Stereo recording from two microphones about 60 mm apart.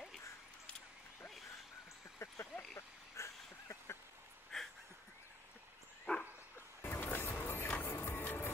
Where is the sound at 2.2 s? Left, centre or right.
Left.